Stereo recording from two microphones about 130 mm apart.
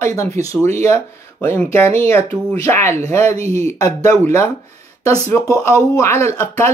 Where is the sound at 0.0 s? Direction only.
20° left (ahead or behind).